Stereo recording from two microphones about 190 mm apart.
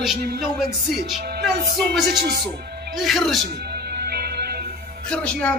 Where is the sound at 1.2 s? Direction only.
55° right (ahead or behind).